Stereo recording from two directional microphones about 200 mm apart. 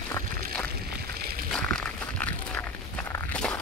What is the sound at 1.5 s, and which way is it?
Walk, 5° left (ahead or behind).